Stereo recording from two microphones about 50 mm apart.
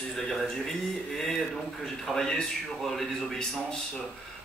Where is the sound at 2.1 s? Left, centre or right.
Centre.